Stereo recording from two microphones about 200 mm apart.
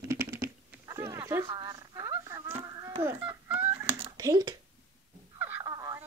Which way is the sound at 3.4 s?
10° right (ahead or behind).